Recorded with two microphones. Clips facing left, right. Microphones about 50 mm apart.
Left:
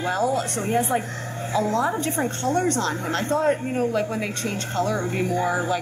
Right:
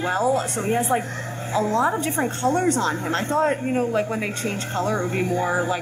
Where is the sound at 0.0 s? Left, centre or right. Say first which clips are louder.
Right 2 dB; centre.